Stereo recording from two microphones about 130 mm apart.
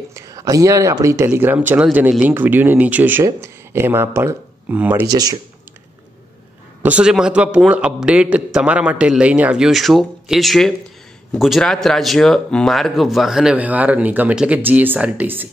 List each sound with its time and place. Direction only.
0.1 s a man's voice: 25° right (ahead or behind)
5.1 s speech: 30° right (ahead or behind)
6.8 s a man's voice: 10° right (ahead or behind)